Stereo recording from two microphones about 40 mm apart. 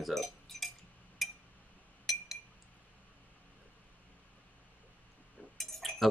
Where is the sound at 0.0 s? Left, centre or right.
Centre.